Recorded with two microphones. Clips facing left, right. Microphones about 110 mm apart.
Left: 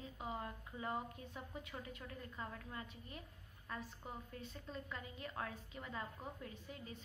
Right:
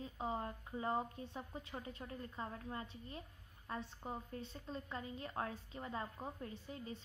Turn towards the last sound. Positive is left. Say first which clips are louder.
# right 4 dB
turn(degrees=-30)  # may be behind; listen again after turning